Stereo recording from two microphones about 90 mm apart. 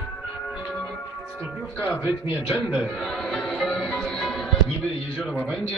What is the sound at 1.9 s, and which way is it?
Speech, 15° right (ahead or behind).